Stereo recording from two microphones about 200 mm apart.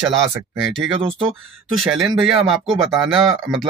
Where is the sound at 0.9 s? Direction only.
30° right (ahead or behind).